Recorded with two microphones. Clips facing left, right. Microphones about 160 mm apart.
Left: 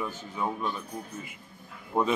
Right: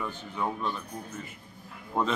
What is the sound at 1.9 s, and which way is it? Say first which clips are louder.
Speech: left 2 dB; 10° left (ahead or behind).